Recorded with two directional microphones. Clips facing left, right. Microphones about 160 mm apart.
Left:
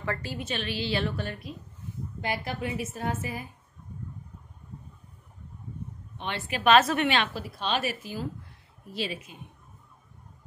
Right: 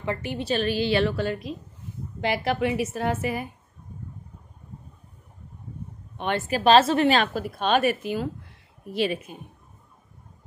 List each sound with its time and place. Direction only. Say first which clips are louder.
0.0 s a woman's voice: right 4 dB; 20° right (ahead or behind)
0.4 s a woman's voice: right 8 dB; 40° right (ahead or behind)
0.9 s speech: right 7 dB; 90° right
2.2 s a woman's voice: right 8 dB; 80° right
6.1 s a woman's voice: right 8 dB; 50° right (ahead or behind)